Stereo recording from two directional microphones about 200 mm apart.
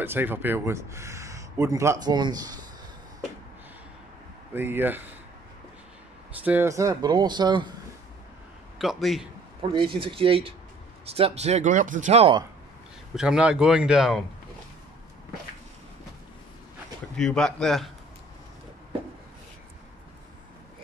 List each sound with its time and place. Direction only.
0.0 s speech: 10° right (ahead or behind)
4.6 s speech: 10° right (ahead or behind)
6.4 s speech: 10° right (ahead or behind)
8.7 s a man's voice: centre (ahead or behind)
9.6 s speech: 25° right (ahead or behind)
13.1 s speech: 5° right (ahead or behind)
17.2 s speech: 5° left (ahead or behind)